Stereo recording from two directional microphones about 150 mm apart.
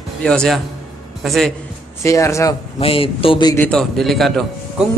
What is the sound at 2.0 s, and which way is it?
Speech, 20° left (ahead or behind).